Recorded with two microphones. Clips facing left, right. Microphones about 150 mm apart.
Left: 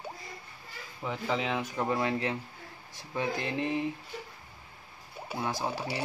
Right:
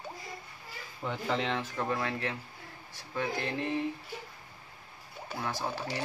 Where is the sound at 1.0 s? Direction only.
Centre (ahead or behind); by 3.8 s 20° left (ahead or behind).